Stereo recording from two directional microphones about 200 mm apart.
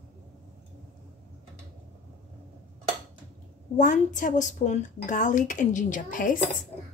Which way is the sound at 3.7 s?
40° left (ahead or behind).